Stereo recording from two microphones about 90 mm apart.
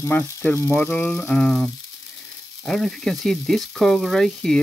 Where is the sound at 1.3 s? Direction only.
10° left (ahead or behind).